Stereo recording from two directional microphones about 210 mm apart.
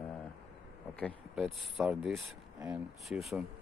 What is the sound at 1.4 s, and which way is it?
Speech, centre (ahead or behind).